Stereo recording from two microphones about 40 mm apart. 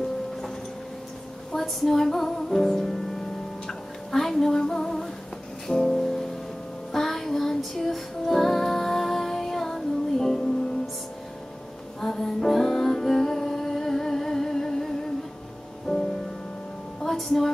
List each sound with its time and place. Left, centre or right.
1.5 s music: centre
12.0 s music: centre
15.9 s music: centre